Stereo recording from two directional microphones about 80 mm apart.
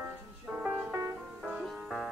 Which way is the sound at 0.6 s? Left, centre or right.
Centre.